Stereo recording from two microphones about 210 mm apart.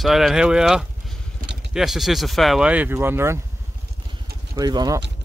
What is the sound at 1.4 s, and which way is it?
Vehicle, 50° right (ahead or behind).